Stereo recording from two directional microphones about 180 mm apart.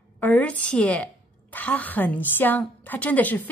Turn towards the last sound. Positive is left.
turn(degrees=10)  # may be behind; listen again after turning